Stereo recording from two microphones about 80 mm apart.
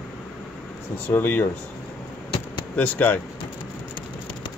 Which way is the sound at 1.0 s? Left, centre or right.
Left.